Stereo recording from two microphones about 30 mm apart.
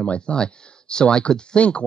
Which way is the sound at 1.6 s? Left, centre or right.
Left.